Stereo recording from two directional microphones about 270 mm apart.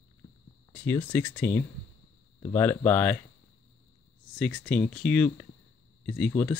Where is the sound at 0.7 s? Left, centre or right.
Centre.